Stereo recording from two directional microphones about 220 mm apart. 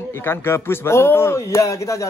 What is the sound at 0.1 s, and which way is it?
Speech, 10° left (ahead or behind).